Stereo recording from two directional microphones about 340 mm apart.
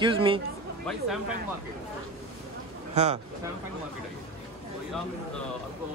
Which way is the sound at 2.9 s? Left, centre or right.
Centre.